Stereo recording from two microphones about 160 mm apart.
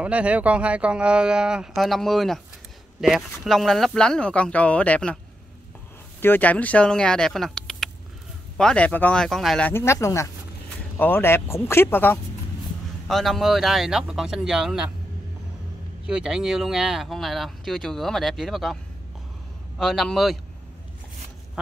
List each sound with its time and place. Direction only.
0.0 s speech: 10° right (ahead or behind); by 5.2 s 5° left (ahead or behind)
6.2 s speech: 10° left (ahead or behind)
9.7 s speech: 15° left (ahead or behind)
13.1 s speech: centre (ahead or behind)
16.1 s speech: 5° right (ahead or behind)
19.8 s speech: centre (ahead or behind)